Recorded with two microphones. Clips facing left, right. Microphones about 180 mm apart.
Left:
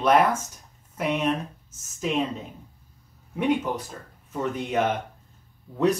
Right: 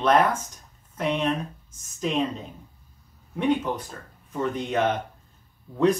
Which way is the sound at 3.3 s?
10° left (ahead or behind).